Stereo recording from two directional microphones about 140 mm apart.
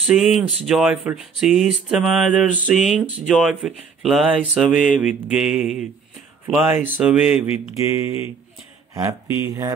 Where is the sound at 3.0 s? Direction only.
5° right (ahead or behind).